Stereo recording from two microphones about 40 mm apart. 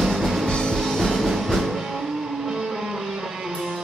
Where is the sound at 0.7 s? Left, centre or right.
Centre.